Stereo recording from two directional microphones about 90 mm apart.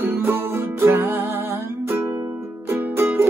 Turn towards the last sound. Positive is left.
turn(degrees=-25)  # may be behind; listen again after turning